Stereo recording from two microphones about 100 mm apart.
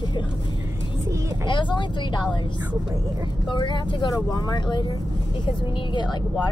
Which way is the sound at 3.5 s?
50° left (ahead or behind).